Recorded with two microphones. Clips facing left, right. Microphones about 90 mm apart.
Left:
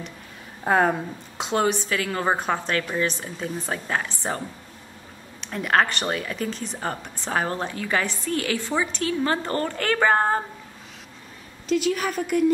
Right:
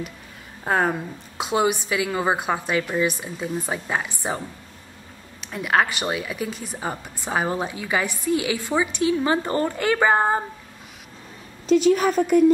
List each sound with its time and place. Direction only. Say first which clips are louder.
0.7 s a woman's voice: left 2 dB; centre (ahead or behind)
1.4 s a woman's voice: right 1 dB; 10° right (ahead or behind)
5.4 s a woman's voice: even; 5° right (ahead or behind)
11.7 s a woman's voice: right 6 dB; 30° right (ahead or behind)